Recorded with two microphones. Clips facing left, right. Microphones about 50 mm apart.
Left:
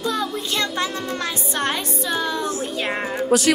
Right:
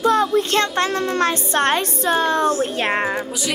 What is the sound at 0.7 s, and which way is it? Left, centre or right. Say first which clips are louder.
A woman's voice: right 6 dB; right.